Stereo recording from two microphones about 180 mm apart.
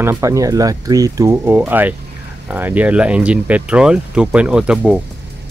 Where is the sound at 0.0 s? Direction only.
15° right (ahead or behind).